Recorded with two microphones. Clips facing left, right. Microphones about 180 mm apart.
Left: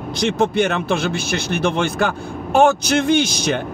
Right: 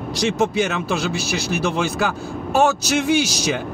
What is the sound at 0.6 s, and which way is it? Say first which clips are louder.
Speech: left 3 dB; 55° left (ahead or behind).